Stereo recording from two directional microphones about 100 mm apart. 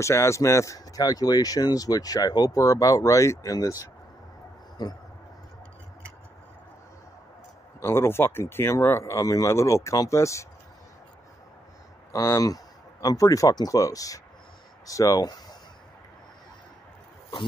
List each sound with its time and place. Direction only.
0.0 s speech: 30° left (ahead or behind)
4.8 s speech: 45° left (ahead or behind)
7.8 s speech: 25° left (ahead or behind)
12.1 s speech: 35° left (ahead or behind)